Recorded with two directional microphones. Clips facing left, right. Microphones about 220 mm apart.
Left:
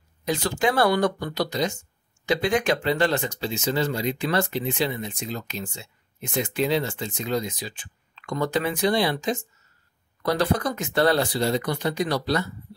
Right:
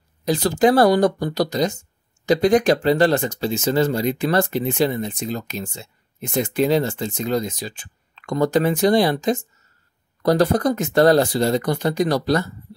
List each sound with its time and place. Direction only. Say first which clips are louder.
0.3 s speech: right 7 dB; 40° right (ahead or behind)